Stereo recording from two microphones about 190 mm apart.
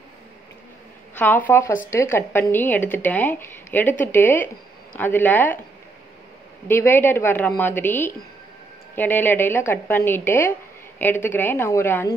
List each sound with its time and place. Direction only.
1.1 s a woman's voice: 10° left (ahead or behind)
6.7 s a woman's voice: 10° left (ahead or behind)